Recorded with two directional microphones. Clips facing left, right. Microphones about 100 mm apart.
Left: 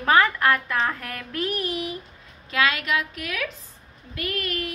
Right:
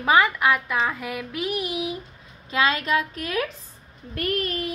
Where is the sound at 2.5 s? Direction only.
25° right (ahead or behind).